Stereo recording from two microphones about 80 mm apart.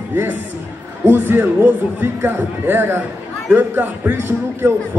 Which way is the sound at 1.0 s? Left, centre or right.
Right.